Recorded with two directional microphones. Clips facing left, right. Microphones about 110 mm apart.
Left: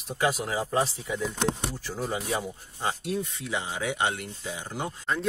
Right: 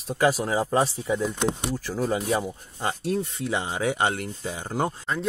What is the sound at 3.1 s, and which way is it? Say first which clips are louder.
Speech: right 4 dB; 35° right (ahead or behind).